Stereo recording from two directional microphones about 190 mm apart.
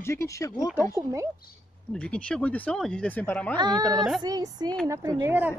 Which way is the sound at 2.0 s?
5° left (ahead or behind).